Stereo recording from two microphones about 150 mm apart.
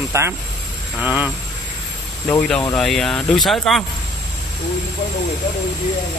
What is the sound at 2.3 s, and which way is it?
Speech, 10° left (ahead or behind).